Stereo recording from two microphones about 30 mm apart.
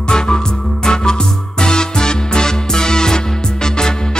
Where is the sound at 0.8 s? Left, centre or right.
Left.